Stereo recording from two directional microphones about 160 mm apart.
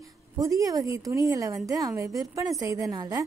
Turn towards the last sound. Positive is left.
turn(degrees=-25)  # may be behind; listen again after turning